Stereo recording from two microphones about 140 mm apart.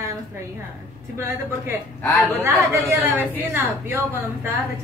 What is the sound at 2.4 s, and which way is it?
A woman's voice, 20° right (ahead or behind).